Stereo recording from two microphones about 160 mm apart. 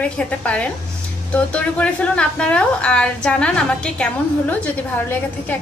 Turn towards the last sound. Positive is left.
turn(degrees=10)  # may be behind; listen again after turning